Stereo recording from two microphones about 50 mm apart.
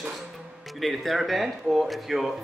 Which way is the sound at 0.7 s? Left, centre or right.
Centre.